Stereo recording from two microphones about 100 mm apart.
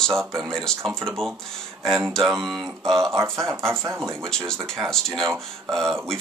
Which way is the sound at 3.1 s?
25° right (ahead or behind).